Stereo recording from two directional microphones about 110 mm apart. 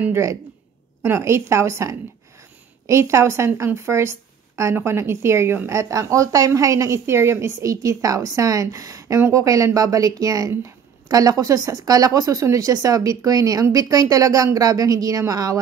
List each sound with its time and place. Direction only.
0.0 s a woman's voice: 25° right (ahead or behind)